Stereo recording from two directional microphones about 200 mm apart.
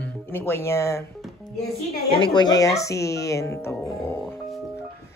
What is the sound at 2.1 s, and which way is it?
A man's voice, 20° left (ahead or behind).